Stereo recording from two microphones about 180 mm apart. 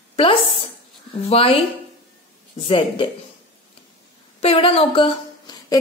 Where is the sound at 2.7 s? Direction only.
30° left (ahead or behind).